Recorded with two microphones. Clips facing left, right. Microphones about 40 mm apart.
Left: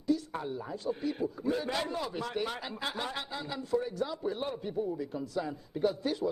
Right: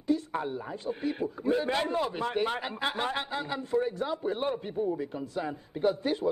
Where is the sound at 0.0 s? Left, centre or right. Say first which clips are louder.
Right 2 dB; right.